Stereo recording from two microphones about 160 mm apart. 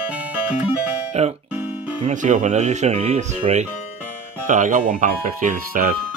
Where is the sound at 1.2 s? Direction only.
40° right (ahead or behind); by 5.9 s 55° right (ahead or behind).